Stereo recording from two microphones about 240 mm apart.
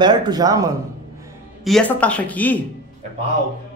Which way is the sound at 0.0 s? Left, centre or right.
Centre.